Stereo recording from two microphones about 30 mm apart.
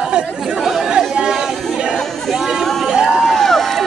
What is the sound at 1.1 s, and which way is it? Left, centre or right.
Chatter, right.